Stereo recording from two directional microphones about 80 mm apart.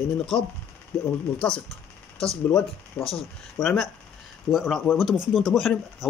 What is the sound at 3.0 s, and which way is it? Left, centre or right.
Speech, left.